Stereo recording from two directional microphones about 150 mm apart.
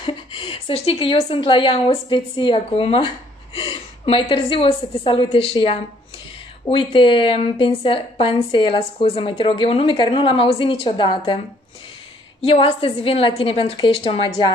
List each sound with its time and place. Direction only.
0.0 s a woman's voice: 35° left (ahead or behind)